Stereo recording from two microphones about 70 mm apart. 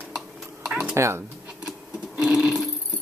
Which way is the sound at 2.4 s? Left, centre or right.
Centre.